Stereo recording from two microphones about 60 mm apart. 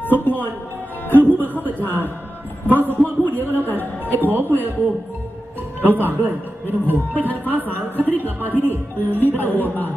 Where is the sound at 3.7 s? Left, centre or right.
Left.